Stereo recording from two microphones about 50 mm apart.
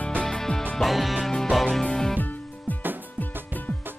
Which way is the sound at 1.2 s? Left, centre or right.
Centre.